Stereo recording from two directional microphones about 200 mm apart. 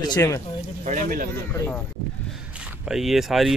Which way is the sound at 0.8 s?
40° right (ahead or behind).